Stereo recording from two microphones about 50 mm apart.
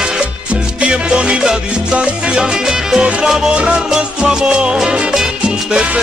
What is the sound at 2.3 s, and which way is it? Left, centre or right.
Salsa music, centre.